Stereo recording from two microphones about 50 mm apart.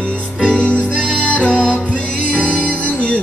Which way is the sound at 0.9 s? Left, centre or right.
Right.